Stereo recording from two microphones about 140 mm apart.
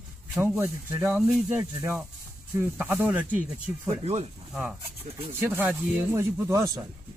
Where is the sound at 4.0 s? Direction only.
50° right (ahead or behind).